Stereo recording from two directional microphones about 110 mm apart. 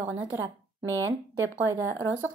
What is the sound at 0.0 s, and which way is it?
Speech, 20° right (ahead or behind).